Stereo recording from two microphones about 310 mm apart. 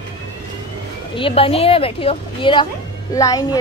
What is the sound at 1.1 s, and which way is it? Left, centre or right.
Speech, centre.